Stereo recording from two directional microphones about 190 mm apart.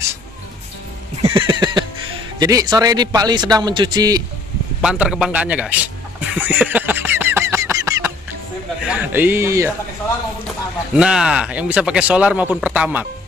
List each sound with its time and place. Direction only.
1.2 s a sound: 25° right (ahead or behind)
2.3 s a man's voice: 20° right (ahead or behind)
4.8 s a man's voice: 5° right (ahead or behind)
6.3 s a sound: 10° right (ahead or behind)
8.8 s a man's voice: 10° right (ahead or behind)
11.0 s speech: 5° right (ahead or behind)